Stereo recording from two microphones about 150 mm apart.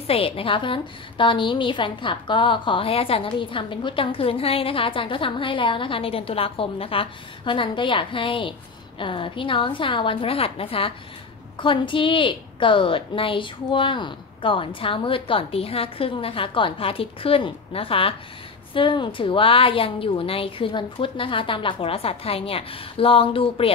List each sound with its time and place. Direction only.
0.0 s a woman's voice: 40° left (ahead or behind)